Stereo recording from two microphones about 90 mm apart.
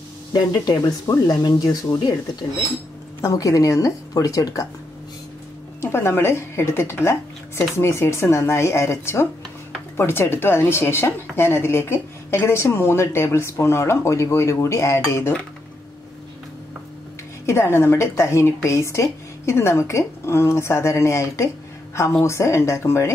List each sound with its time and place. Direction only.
0.3 s speech: 50° left (ahead or behind)
3.2 s a woman's voice: 40° left (ahead or behind)
5.8 s a woman's voice: 25° left (ahead or behind)
17.5 s a woman's voice: 30° left (ahead or behind)